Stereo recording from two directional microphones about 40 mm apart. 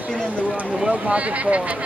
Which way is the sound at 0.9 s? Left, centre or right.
Right.